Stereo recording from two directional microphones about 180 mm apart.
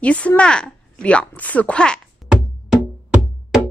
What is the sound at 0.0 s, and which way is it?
Speech, 5° left (ahead or behind).